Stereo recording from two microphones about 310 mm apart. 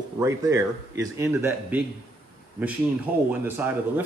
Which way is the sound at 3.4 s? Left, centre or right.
Centre.